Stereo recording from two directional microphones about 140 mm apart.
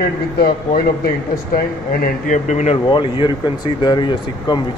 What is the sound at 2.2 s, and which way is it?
Speech, 60° left (ahead or behind).